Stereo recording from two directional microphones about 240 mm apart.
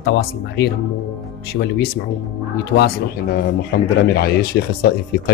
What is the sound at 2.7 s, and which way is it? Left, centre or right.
Speech, left.